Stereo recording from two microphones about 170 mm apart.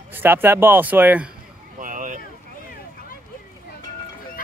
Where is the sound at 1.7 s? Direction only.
50° right (ahead or behind).